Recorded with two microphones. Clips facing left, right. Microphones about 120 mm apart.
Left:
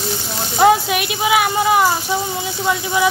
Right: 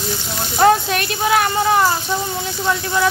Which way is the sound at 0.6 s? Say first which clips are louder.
Left 1 dB; 10° left (ahead or behind).